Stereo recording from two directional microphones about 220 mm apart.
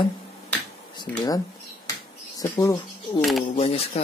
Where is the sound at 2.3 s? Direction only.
15° left (ahead or behind).